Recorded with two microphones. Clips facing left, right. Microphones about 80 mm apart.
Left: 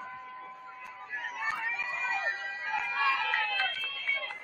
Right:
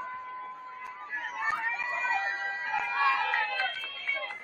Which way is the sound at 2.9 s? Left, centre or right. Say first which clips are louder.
Right 3 dB; right.